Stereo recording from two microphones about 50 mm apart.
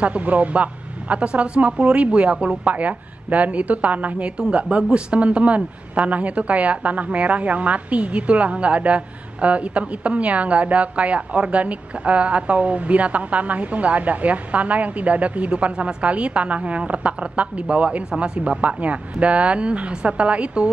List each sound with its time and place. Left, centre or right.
0.0 s a woman's voice: right